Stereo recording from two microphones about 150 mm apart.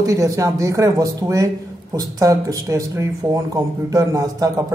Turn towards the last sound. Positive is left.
turn(degrees=-25)  # may be behind; listen again after turning